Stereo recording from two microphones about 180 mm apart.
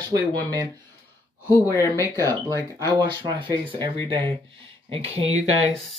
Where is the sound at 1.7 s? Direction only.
15° left (ahead or behind).